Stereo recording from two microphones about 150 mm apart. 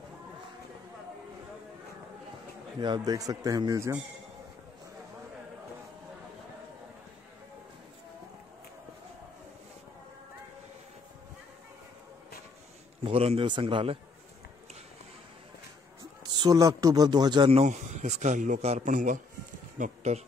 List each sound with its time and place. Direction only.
2.8 s speech: 30° right (ahead or behind)
13.0 s a man's voice: 40° right (ahead or behind)
16.3 s speech: 25° right (ahead or behind)
17.5 s a man's voice: 50° right (ahead or behind)